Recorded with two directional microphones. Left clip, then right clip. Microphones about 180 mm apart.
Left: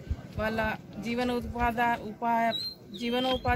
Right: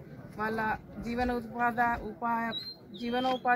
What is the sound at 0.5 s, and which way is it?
Speech, 15° left (ahead or behind).